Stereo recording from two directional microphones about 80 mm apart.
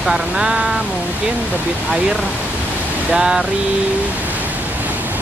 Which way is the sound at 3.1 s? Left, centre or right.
Centre.